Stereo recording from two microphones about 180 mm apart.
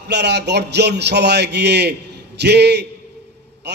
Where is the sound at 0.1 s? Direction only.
70° right (ahead or behind).